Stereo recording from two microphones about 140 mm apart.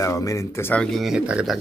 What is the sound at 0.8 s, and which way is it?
Speech, centre (ahead or behind).